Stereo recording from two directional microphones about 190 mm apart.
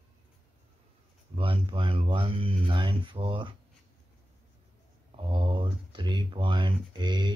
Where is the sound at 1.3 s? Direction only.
25° right (ahead or behind).